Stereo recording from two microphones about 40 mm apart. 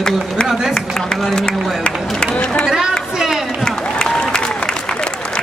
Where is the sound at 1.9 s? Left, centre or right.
Left.